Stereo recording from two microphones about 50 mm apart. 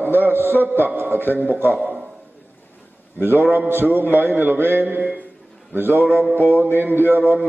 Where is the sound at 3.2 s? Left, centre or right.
Right.